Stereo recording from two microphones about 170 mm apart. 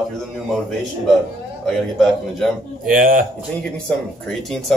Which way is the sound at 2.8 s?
50° right (ahead or behind).